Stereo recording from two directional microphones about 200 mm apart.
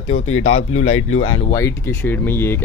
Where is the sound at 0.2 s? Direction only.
90° left.